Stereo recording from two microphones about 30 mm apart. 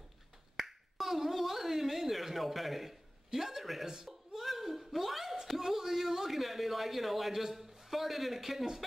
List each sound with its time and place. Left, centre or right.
0.6 s finger snapping: centre
3.3 s speech: centre
3.8 s a sound: centre